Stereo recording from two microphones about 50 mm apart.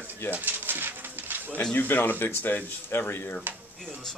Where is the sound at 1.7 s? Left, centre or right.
Left.